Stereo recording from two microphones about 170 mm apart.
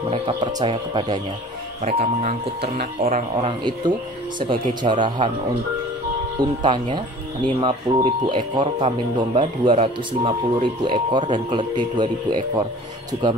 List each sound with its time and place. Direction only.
0.1 s speech: 25° right (ahead or behind)
1.8 s speech: 40° right (ahead or behind)
4.4 s speech: 30° right (ahead or behind)
6.4 s speech: 25° right (ahead or behind)